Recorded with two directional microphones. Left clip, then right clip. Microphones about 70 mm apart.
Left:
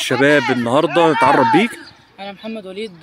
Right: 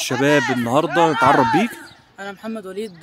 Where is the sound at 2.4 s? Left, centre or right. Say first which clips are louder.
Left 1 dB; right.